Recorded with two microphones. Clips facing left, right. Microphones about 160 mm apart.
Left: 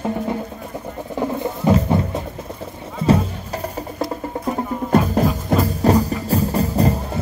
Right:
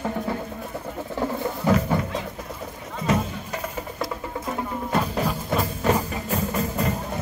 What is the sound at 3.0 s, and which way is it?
Music, 30° left (ahead or behind).